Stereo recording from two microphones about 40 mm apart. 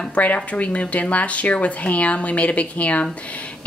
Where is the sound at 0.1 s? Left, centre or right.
Left.